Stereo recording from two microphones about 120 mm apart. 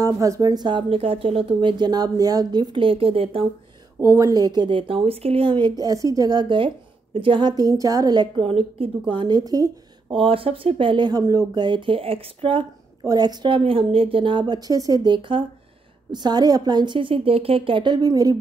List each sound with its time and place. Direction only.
0.0 s a woman's voice: 30° right (ahead or behind); by 3.4 s 50° right (ahead or behind)
4.0 s a woman's voice: 25° right (ahead or behind)
8.4 s a woman's voice: 55° right (ahead or behind)
9.1 s a woman's voice: 40° right (ahead or behind)
10.1 s a woman's voice: 50° right (ahead or behind)
13.0 s a woman's voice: 35° right (ahead or behind)